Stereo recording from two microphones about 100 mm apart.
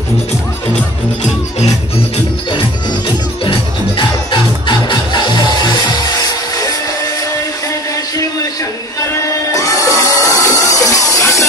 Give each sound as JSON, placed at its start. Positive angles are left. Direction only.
{"t": 3.4, "sound": "music", "side_deg": 55}
{"t": 9.5, "sound": "music", "side_deg": 30}